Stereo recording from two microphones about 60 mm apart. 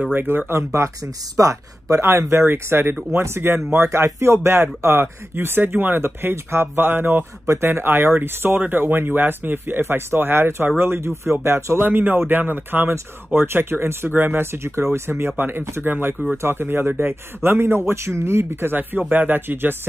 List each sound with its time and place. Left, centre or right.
0.1 s speech: right
0.7 s speech: right
7.4 s speech: right
18.8 s speech: right